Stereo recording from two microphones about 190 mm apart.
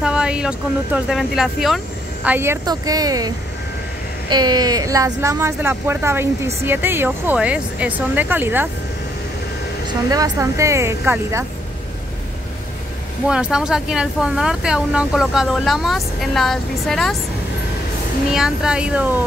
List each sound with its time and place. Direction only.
0.0 s speech: 5° right (ahead or behind)
2.2 s a woman's voice: 10° right (ahead or behind)
10.0 s speech: 20° right (ahead or behind)
13.3 s speech: 5° right (ahead or behind)
18.3 s speech: 5° right (ahead or behind)